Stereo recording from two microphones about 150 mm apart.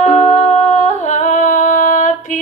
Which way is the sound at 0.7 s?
55° left (ahead or behind).